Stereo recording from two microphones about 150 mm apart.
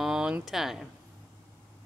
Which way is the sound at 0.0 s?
5° right (ahead or behind).